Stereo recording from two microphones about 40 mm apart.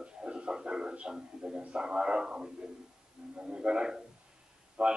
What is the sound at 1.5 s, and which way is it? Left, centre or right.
A man's voice, right.